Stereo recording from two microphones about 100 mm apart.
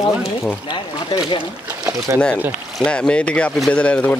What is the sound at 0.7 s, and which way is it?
Speech, 55° left (ahead or behind).